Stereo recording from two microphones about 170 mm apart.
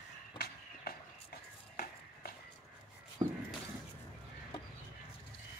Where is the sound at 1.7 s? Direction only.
65° left (ahead or behind).